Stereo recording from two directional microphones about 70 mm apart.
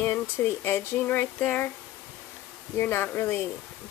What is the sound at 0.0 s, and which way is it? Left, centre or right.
Speech, left.